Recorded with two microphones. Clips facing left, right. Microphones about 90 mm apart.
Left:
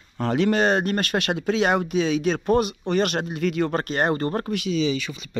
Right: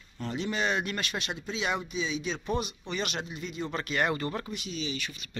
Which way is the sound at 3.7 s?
40° left (ahead or behind).